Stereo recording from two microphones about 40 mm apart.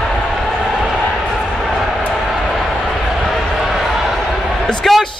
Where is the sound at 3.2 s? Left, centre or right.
Centre.